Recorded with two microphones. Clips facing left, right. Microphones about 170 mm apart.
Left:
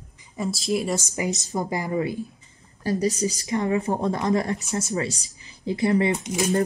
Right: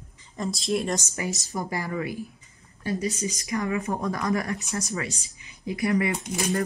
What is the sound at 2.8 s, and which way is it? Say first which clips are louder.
Speech: left 5 dB; 40° left (ahead or behind).